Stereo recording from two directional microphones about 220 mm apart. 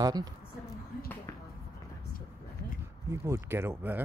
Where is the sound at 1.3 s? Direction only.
10° left (ahead or behind).